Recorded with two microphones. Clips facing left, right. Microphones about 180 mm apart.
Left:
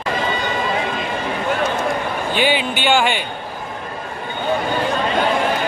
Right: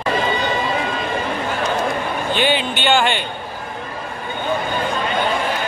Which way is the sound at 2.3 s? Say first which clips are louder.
Left 2 dB; 10° left (ahead or behind).